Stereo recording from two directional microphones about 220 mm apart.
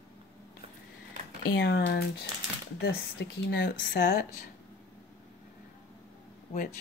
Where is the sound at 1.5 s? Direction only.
45° left (ahead or behind).